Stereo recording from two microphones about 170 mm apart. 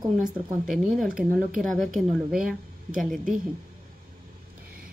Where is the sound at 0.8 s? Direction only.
5° right (ahead or behind).